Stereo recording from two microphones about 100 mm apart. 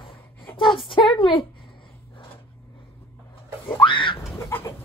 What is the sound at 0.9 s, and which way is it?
Speech, 55° left (ahead or behind).